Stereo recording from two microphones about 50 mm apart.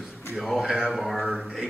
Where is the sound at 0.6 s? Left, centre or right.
Centre.